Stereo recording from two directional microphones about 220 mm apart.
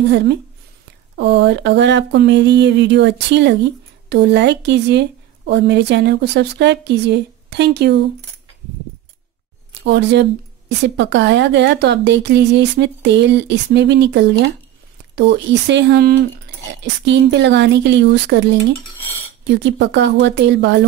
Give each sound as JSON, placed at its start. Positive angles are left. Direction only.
{"t": 1.1, "sound": "a woman's voice", "side_deg": -50}
{"t": 9.8, "sound": "a woman's voice", "side_deg": -50}